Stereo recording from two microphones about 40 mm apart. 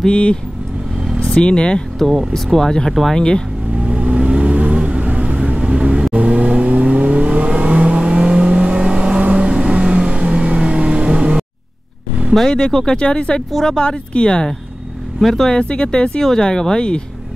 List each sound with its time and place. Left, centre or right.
0.1 s speech: left
2.0 s speech: centre
2.9 s speech: centre
3.2 s speech: left
3.7 s vehicle: right
12.4 s speech: centre
15.1 s speech: centre
15.5 s speech: left
16.2 s speech: centre